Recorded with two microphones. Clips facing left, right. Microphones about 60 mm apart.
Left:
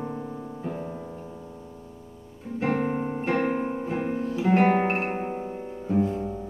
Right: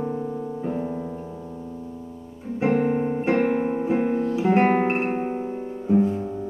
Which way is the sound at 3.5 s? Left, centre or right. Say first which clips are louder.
Right 5 dB; right.